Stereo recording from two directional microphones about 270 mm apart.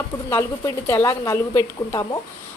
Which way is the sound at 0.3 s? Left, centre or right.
Centre.